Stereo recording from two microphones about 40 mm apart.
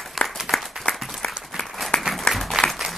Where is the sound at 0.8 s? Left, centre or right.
Left.